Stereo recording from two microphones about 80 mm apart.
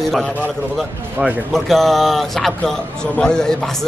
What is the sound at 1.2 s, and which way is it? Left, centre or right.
Speech, right.